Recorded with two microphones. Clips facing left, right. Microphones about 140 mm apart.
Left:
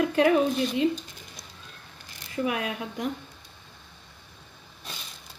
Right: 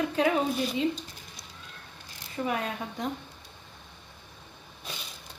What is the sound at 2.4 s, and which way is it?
Speech, 70° left (ahead or behind).